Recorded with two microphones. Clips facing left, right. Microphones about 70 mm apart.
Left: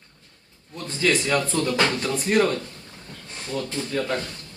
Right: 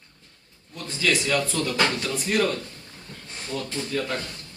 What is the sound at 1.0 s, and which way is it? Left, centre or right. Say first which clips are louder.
Speech: left 2 dB; left.